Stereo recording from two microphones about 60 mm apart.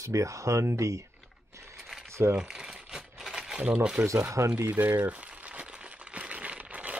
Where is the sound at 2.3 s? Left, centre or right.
Centre.